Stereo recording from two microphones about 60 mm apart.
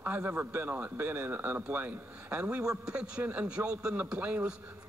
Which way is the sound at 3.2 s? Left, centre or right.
Right.